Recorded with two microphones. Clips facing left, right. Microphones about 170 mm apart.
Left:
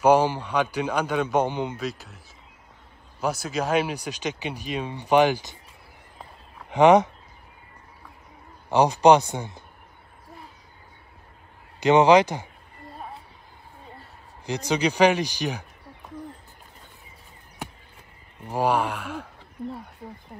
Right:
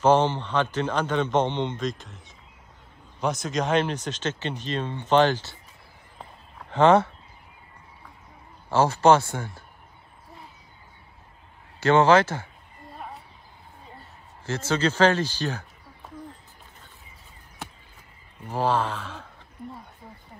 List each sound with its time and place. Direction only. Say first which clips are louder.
0.0 s speech: left 1 dB; 10° left (ahead or behind)
6.7 s speech: left 2 dB; 15° left (ahead or behind)
8.6 s speech: left 2 dB; 15° left (ahead or behind)
11.8 s speech: left 2 dB; 15° left (ahead or behind)
14.4 s speech: left 1 dB; 15° left (ahead or behind)
18.5 s speech: left 1 dB; 15° left (ahead or behind)